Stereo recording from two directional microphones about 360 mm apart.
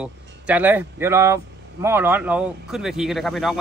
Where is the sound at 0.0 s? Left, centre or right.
Centre.